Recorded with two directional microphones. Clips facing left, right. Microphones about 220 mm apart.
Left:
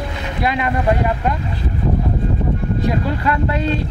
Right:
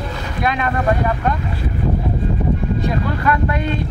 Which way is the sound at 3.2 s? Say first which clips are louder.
Right 1 dB; 25° left (ahead or behind).